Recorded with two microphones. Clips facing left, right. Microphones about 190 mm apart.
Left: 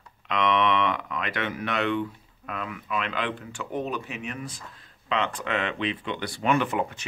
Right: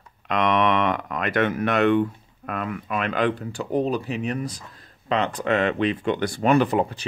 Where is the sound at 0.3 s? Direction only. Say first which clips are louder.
Right 3 dB; 45° right (ahead or behind).